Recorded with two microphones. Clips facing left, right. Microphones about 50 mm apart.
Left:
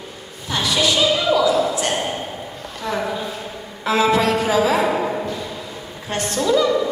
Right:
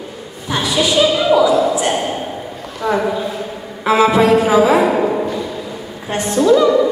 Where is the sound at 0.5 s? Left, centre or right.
Centre.